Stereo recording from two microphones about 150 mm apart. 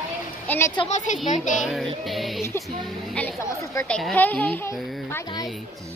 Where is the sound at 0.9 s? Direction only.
50° left (ahead or behind).